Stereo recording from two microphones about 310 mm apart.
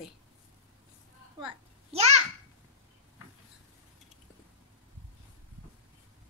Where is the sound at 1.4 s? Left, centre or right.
Centre.